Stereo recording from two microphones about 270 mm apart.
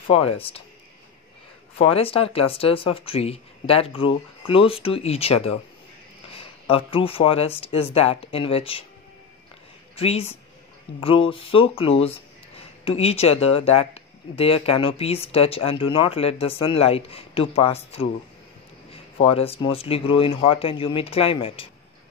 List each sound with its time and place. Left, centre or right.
0.1 s speech: left
1.8 s speech: left
9.9 s speech: left